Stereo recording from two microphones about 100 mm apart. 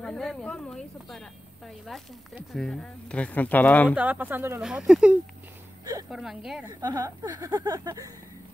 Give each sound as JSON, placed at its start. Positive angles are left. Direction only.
{"t": 0.0, "sound": "speech", "side_deg": 5}
{"t": 3.9, "sound": "speech", "side_deg": -15}
{"t": 4.6, "sound": "speech", "side_deg": -5}
{"t": 6.8, "sound": "speech", "side_deg": -35}